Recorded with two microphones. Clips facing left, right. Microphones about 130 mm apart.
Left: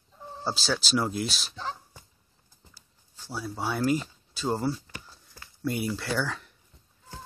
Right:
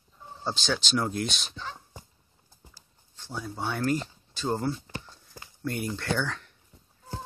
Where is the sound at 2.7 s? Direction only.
10° left (ahead or behind).